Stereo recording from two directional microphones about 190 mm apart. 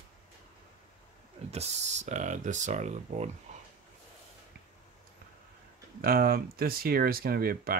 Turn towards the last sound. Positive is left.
turn(degrees=-50)  # may be behind; listen again after turning